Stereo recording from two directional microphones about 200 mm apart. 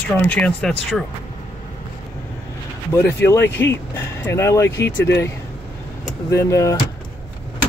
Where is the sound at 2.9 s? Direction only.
10° left (ahead or behind).